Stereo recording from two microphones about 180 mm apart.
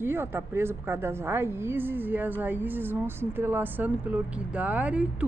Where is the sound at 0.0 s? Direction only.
15° right (ahead or behind).